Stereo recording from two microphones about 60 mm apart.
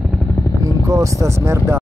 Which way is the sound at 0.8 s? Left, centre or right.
Right.